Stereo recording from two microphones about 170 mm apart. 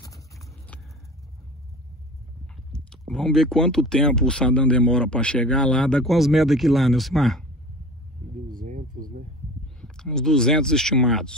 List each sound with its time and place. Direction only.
2.7 s speech: 5° left (ahead or behind)
8.5 s a sound: 50° right (ahead or behind)
9.8 s speech: 5° left (ahead or behind)